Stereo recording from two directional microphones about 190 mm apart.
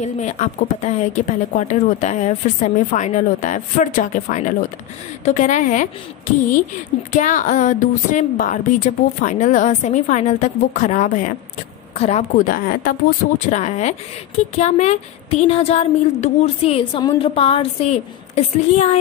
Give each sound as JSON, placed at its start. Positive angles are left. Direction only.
{"t": 0.0, "sound": "a woman's voice", "side_deg": 40}